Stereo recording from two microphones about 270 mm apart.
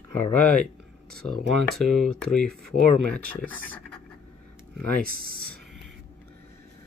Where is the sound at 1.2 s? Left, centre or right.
Left.